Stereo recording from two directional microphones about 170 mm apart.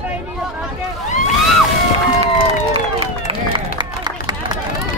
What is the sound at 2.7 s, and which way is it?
Run, 35° right (ahead or behind).